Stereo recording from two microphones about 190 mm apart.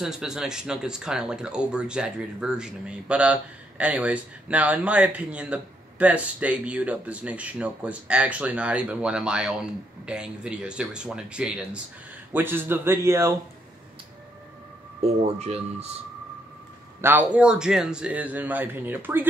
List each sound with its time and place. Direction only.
0.0 s speech: 5° right (ahead or behind)
15.2 s speech: 35° right (ahead or behind)
17.0 s speech: 10° right (ahead or behind)